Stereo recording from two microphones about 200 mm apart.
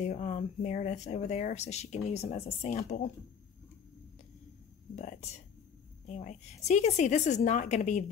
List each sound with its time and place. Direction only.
0.0 s speech: 35° left (ahead or behind)
4.9 s speech: 35° left (ahead or behind)